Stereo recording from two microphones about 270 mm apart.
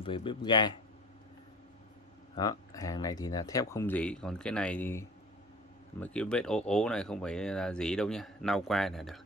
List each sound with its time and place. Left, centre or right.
0.0 s speech: centre
2.3 s speech: centre